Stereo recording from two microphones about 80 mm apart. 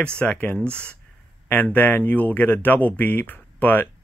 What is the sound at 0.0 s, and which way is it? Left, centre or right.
Speech, centre.